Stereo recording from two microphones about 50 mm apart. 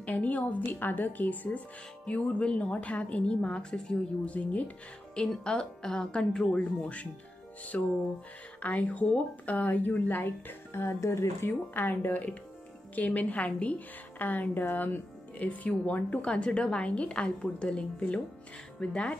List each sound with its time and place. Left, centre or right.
0.0 s a woman's voice: left
0.7 s a woman's voice: left
5.2 s a woman's voice: centre; by 10.3 s left
10.7 s speech: left
11.7 s a woman's voice: left
15.3 s a woman's voice: left